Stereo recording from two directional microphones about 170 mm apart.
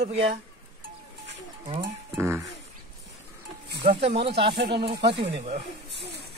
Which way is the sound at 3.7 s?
75° right (ahead or behind).